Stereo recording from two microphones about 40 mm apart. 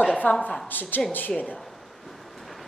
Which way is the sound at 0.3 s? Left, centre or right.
Left.